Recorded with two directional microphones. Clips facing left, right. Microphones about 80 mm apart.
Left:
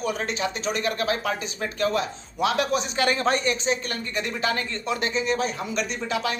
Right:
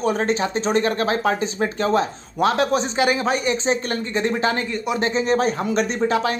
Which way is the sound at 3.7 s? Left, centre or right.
Right.